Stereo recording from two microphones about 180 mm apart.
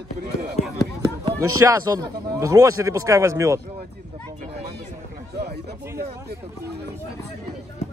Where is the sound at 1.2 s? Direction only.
15° right (ahead or behind).